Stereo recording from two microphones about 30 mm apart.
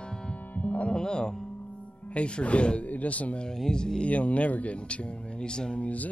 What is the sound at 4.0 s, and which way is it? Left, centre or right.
Speech, left.